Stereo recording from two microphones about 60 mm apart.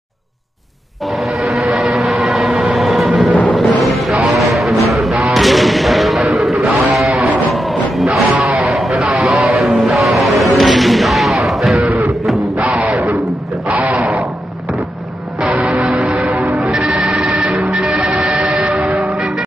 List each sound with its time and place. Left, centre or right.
1.1 s train: centre
3.5 s a sound: centre
4.4 s music: centre
9.2 s a sound: centre
9.6 s music: centre
9.9 s a sound: centre
12.0 s music: centre
13.7 s a sound: right
15.5 s music: right
16.4 s music: centre
18.1 s train: centre
18.5 s music: centre